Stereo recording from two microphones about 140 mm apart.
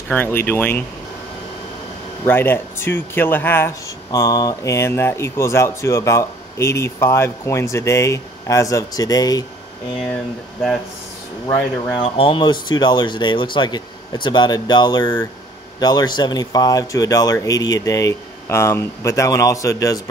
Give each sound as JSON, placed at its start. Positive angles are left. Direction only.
{"t": 0.1, "sound": "speech", "side_deg": 15}
{"t": 2.2, "sound": "speech", "side_deg": 15}
{"t": 12.0, "sound": "speech", "side_deg": 40}